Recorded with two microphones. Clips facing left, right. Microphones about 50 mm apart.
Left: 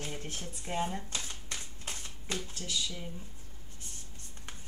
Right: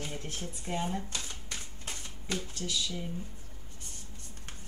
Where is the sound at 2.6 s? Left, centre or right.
Centre.